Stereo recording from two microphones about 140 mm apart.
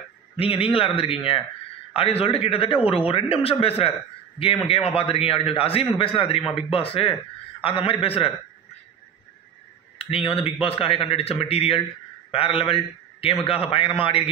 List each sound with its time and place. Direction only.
0.4 s a man's voice: 40° left (ahead or behind)
9.9 s a man's voice: 45° left (ahead or behind)